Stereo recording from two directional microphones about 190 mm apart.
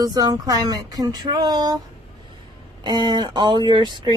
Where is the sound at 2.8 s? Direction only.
20° right (ahead or behind).